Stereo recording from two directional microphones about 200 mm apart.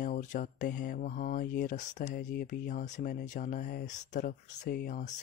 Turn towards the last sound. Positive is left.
turn(degrees=40)  # may be behind; listen again after turning